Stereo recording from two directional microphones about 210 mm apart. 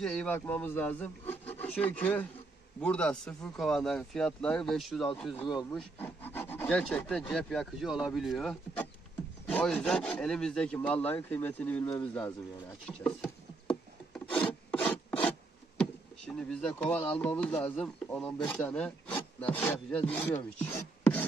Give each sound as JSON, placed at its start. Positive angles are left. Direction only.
{"t": 0.0, "sound": "speech", "side_deg": 5}
{"t": 2.8, "sound": "rub", "side_deg": 5}
{"t": 9.5, "sound": "speech", "side_deg": 5}
{"t": 11.8, "sound": "speech", "side_deg": 25}
{"t": 12.1, "sound": "speech", "side_deg": 5}
{"t": 14.1, "sound": "filing", "side_deg": 5}
{"t": 15.8, "sound": "speech", "side_deg": 5}